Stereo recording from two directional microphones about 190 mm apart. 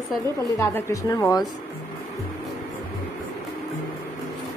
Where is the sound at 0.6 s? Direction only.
15° left (ahead or behind).